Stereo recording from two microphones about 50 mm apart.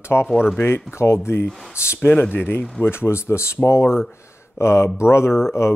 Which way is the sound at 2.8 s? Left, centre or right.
Left.